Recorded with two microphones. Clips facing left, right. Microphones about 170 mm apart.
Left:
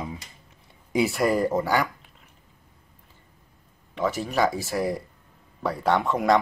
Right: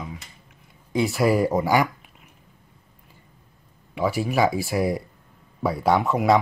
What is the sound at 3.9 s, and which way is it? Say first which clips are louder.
Speech: right 2 dB; 10° right (ahead or behind).